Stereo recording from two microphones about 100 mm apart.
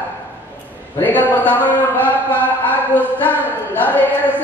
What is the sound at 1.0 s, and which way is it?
A man's voice, 20° left (ahead or behind).